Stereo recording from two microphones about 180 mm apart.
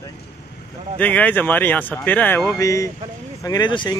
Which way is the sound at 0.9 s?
10° left (ahead or behind).